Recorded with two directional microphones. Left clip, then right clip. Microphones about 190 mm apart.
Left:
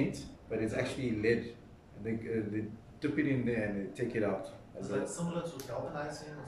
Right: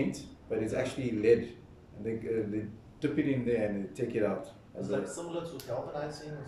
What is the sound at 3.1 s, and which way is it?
Speech, 10° right (ahead or behind).